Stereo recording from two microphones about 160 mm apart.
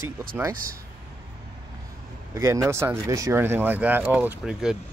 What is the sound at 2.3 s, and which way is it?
Speech, 20° right (ahead or behind).